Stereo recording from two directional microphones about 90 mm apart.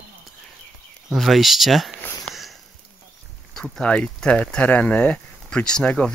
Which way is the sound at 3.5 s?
10° left (ahead or behind).